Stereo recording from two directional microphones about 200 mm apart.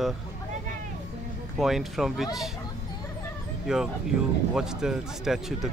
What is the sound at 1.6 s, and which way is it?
Speech, centre (ahead or behind).